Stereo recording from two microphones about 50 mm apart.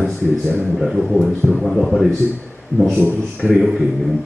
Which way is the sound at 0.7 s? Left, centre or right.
Centre.